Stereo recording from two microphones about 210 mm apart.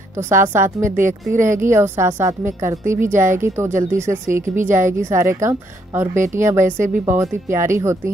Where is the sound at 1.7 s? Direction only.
10° right (ahead or behind).